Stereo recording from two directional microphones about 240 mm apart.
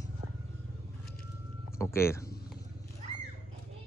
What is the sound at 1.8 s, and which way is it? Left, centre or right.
Speech, centre.